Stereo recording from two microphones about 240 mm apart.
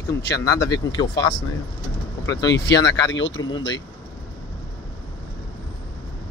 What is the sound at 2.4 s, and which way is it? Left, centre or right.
Speech, left.